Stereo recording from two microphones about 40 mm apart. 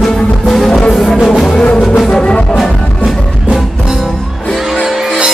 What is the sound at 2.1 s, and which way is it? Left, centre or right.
Music, left.